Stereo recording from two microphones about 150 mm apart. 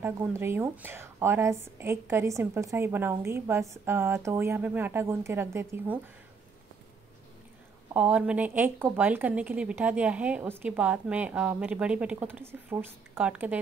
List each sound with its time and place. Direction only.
0.0 s a woman's voice: 15° right (ahead or behind)
7.9 s a woman's voice: 10° right (ahead or behind)